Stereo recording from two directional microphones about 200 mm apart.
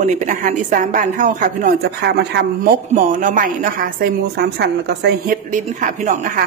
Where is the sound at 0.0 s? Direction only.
35° right (ahead or behind).